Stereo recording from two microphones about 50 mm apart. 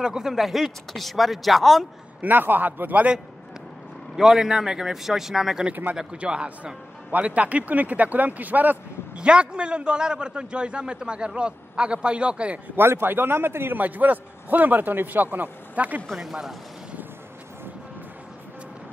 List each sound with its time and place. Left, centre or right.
0.0 s speech: centre
2.2 s a man's voice: right
4.2 s speech: centre
6.1 s a man's voice: right
9.1 s a man's voice: right
12.7 s a man's voice: right
13.7 s a man's voice: right
16.2 s speech: centre